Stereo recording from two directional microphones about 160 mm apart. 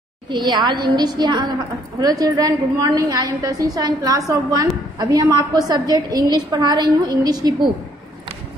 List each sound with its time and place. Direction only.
0.3 s a woman's voice: 30° right (ahead or behind)